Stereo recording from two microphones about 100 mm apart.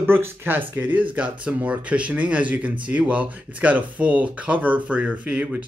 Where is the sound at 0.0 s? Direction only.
20° right (ahead or behind).